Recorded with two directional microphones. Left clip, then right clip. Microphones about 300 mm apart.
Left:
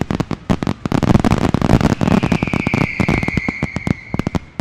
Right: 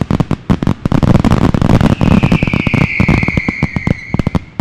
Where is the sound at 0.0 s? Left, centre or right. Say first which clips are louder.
Right 4 dB; centre.